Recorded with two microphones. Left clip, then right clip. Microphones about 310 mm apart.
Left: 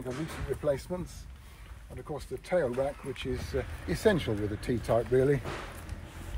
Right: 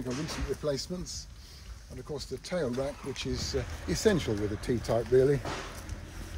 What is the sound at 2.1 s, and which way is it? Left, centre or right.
Speech, centre.